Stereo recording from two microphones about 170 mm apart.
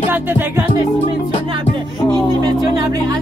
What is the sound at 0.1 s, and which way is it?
Music, 10° right (ahead or behind).